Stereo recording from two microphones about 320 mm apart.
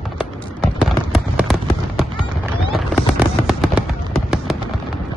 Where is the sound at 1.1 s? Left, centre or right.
Centre.